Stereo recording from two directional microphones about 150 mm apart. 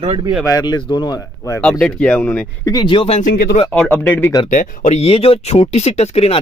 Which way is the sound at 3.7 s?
10° left (ahead or behind).